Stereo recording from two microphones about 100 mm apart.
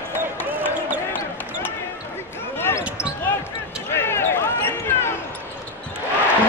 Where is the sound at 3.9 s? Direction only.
25° left (ahead or behind).